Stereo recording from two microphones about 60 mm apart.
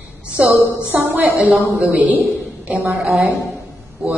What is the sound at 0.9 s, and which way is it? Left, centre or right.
A woman's voice, right.